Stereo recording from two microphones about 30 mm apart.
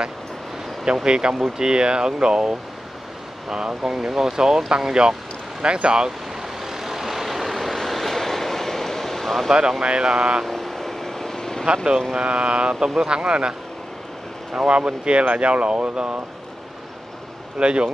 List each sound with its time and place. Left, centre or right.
1.0 s speech: right
6.4 s vehicle: centre
9.5 s speech: right
10.5 s vehicle: centre
11.6 s speech: right
12.8 s speech: right
13.2 s speech: right
14.7 s speech: right
17.6 s speech: right